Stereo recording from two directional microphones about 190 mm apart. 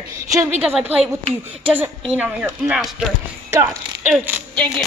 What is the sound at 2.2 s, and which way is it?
Speech, 10° right (ahead or behind).